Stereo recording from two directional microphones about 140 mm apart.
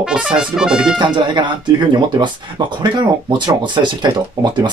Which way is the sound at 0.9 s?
35° right (ahead or behind).